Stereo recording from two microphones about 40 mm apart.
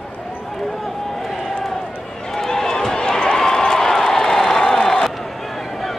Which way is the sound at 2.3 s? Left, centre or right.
Centre.